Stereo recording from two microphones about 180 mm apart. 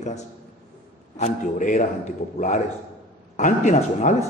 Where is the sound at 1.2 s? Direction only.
40° left (ahead or behind).